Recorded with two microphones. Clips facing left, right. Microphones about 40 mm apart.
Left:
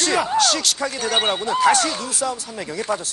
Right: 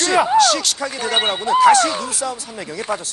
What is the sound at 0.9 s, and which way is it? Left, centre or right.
Speech, centre.